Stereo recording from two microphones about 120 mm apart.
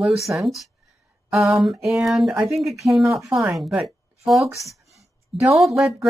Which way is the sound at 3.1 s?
25° right (ahead or behind).